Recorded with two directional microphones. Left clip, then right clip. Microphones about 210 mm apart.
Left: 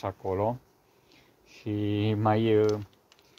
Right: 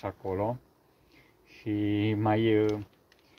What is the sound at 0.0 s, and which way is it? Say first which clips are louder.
Speech: left 3 dB; 40° left (ahead or behind).